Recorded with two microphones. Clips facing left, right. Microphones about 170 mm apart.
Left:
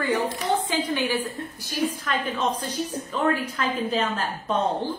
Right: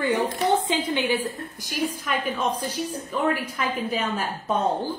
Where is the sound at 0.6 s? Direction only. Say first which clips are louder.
Right 1 dB; 20° right (ahead or behind).